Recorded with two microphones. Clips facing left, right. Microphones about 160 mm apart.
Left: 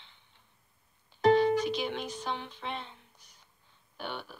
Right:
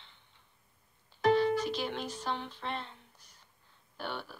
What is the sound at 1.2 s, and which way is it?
Music, 20° left (ahead or behind).